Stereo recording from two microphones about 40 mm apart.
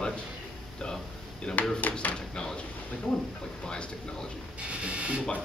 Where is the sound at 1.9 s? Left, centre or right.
Left.